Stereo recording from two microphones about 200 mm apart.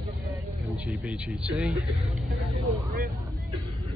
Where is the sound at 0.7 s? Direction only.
5° right (ahead or behind).